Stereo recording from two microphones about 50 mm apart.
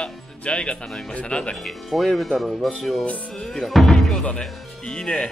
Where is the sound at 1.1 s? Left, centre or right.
Left.